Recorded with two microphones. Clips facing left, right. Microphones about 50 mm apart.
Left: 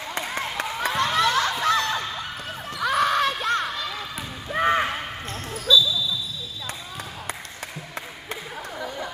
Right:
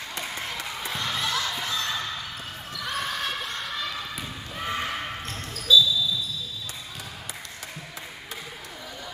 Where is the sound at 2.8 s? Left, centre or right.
Left.